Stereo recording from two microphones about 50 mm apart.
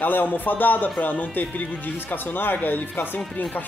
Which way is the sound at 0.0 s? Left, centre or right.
Left.